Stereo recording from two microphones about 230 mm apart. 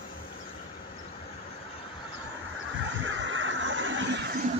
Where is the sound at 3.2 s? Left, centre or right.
Right.